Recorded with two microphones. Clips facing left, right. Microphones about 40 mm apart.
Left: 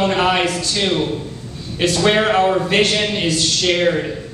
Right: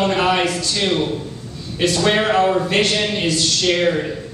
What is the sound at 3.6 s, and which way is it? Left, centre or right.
Speech, centre.